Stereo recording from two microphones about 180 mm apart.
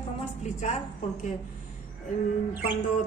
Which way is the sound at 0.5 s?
40° left (ahead or behind).